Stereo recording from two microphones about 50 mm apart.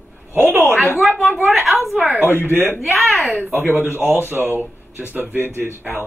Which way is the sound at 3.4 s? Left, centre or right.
Right.